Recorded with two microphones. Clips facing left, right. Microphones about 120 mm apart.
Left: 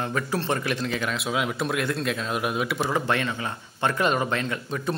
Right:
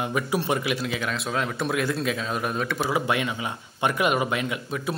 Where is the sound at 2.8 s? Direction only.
10° right (ahead or behind).